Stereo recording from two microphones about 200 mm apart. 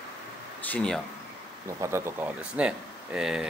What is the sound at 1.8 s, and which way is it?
Speech, 10° right (ahead or behind).